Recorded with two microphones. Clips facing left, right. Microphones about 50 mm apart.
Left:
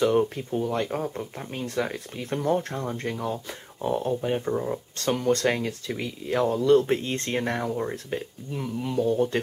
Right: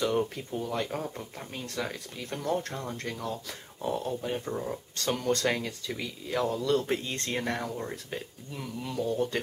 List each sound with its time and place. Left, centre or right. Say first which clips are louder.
0.0 s speech: left 6 dB; centre